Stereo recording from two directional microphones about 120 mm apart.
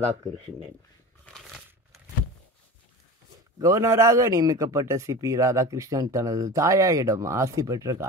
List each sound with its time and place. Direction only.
0.0 s speech: 70° right (ahead or behind)
1.2 s a sound: centre (ahead or behind)
3.5 s a man's voice: 25° right (ahead or behind)